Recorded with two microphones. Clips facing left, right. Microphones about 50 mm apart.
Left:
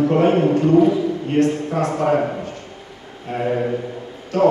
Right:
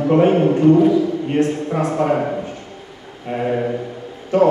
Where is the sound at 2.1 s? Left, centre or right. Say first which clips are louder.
Even; centre.